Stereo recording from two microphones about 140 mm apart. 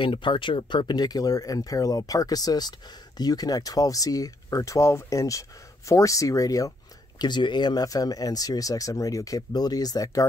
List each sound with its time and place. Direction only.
0.0 s speech: 35° left (ahead or behind)